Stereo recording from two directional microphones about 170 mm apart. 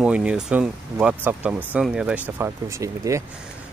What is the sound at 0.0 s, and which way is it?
Speech, 5° right (ahead or behind).